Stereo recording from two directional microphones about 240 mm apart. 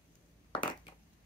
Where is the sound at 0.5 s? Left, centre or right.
Centre.